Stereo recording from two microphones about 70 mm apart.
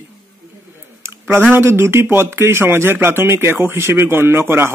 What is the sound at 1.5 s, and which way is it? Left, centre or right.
Speech, right.